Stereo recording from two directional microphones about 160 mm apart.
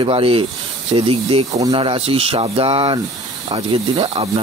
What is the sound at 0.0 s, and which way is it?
Speech, 35° right (ahead or behind).